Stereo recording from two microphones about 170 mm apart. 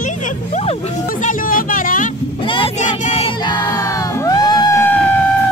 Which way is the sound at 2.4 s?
30° left (ahead or behind).